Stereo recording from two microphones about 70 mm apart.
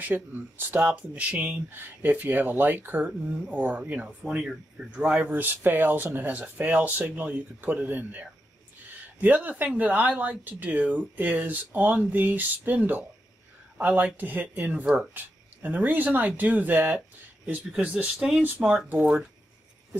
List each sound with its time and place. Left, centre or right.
0.0 s speech: right
1.7 s speech: right
4.9 s speech: centre
5.2 s speech: right
17.5 s speech: centre
18.9 s speech: centre